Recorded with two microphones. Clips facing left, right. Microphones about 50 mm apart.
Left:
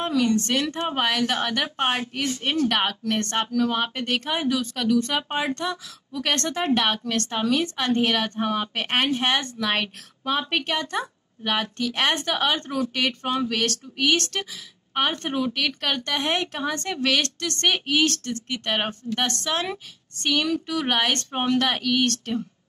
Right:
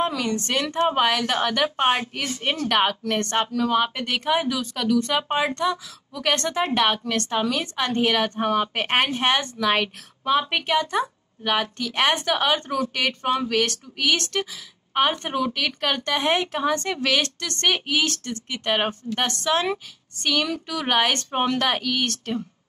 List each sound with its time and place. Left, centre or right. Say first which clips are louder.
0.2 s a woman's voice: left 2 dB; centre
3.7 s a woman's voice: right 3 dB; centre
8.7 s a woman's voice: right 1 dB; centre